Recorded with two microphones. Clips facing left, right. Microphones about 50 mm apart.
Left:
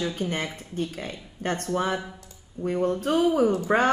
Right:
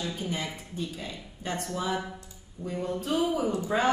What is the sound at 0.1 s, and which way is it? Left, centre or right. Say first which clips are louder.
Speech: left 4 dB; left.